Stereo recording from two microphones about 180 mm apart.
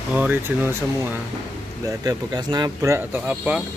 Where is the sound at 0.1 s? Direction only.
10° right (ahead or behind).